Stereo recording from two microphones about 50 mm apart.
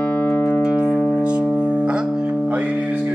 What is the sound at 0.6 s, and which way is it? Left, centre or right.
Music, centre.